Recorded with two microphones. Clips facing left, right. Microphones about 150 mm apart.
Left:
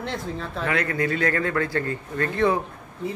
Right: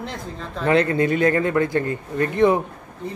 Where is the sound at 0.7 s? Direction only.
25° right (ahead or behind).